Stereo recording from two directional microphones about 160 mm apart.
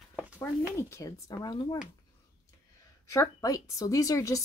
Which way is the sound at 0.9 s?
20° left (ahead or behind).